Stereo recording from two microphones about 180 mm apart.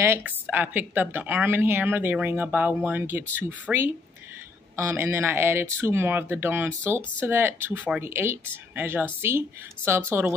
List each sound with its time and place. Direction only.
0.0 s speech: 10° right (ahead or behind)